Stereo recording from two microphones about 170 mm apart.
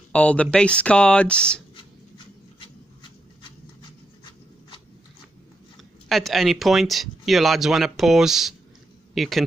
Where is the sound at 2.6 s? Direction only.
30° left (ahead or behind).